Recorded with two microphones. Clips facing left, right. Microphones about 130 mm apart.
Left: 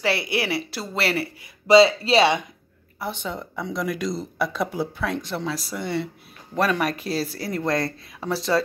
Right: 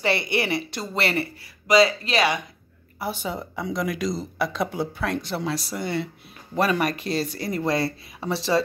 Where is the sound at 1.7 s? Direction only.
25° left (ahead or behind).